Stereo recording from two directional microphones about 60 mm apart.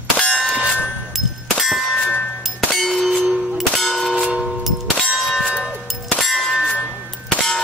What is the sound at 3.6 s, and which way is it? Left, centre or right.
Clang, centre.